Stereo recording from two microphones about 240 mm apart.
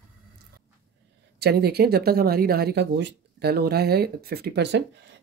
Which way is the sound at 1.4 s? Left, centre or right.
Right.